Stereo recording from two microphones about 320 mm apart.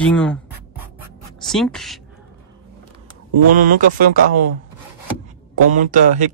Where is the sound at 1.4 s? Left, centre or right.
Centre.